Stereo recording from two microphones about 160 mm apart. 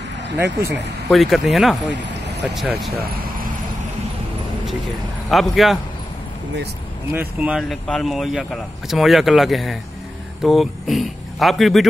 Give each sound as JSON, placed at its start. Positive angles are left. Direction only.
{"t": 0.4, "sound": "speech", "side_deg": -20}
{"t": 1.1, "sound": "speech", "side_deg": 0}
{"t": 5.3, "sound": "speech", "side_deg": 0}
{"t": 7.1, "sound": "speech", "side_deg": -10}